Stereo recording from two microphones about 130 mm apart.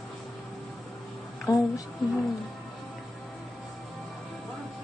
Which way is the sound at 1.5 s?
30° left (ahead or behind).